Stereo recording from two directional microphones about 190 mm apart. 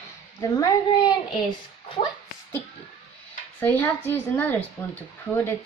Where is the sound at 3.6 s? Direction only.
10° left (ahead or behind).